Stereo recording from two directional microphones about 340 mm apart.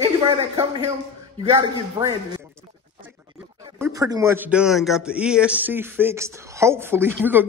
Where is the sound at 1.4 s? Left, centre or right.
Centre.